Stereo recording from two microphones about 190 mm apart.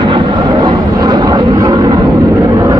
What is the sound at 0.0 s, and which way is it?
Vehicle, 25° right (ahead or behind).